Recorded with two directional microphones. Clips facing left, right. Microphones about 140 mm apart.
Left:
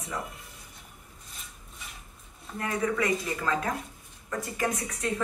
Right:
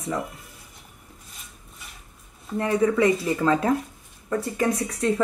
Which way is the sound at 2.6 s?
30° right (ahead or behind).